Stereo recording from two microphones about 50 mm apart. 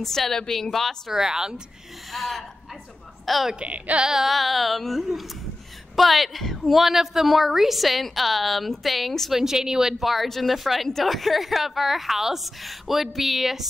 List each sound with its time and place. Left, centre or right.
0.0 s a woman's voice: centre
1.1 s speech: centre
2.1 s a woman's voice: centre
3.5 s speech: right
4.0 s a woman's voice: centre
9.3 s a woman's voice: centre